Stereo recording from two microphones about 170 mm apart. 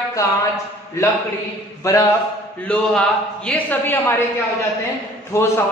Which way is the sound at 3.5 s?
10° left (ahead or behind).